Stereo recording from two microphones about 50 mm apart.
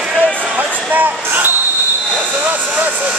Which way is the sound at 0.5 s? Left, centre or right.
Right.